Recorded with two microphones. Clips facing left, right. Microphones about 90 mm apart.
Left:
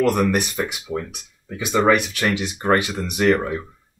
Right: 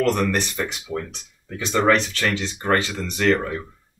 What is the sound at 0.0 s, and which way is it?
Speech, 10° left (ahead or behind).